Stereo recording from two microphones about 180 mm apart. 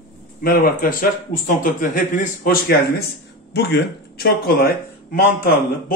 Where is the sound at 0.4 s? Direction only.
55° left (ahead or behind).